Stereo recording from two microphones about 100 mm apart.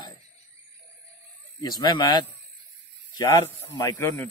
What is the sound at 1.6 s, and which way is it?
Speech, 45° left (ahead or behind).